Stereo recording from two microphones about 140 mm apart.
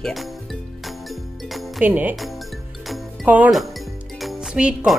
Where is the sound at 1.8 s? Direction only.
10° right (ahead or behind).